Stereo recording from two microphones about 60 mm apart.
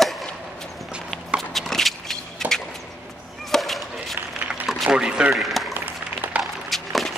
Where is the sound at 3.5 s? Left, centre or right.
Centre.